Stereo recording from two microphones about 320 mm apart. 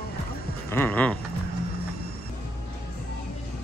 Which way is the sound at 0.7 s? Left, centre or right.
Centre.